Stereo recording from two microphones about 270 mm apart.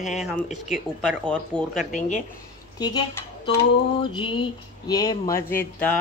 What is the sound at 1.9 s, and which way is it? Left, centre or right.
Speech, left.